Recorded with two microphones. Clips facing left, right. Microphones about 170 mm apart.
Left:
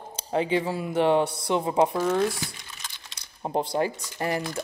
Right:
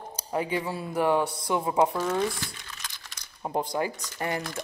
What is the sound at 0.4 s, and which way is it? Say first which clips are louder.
Speech: left 4 dB; 25° left (ahead or behind).